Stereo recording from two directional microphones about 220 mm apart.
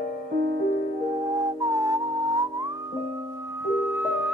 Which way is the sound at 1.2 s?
15° right (ahead or behind).